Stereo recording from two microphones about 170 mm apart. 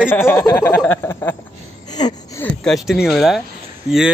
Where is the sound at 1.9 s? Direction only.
25° left (ahead or behind).